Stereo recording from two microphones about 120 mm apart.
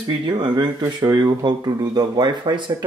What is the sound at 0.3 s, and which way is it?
Speech, 40° right (ahead or behind).